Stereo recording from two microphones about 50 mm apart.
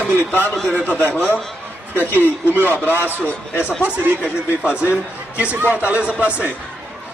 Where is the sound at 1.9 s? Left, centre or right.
Left.